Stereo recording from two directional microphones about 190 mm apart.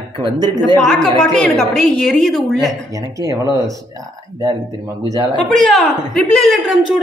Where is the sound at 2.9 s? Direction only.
20° right (ahead or behind).